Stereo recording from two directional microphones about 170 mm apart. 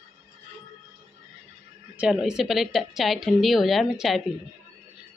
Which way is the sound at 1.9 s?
5° right (ahead or behind).